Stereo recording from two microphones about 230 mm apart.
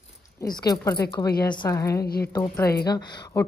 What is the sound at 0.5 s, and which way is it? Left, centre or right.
A woman's voice, centre.